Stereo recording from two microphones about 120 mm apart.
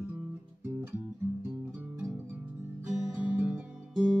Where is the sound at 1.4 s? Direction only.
15° right (ahead or behind).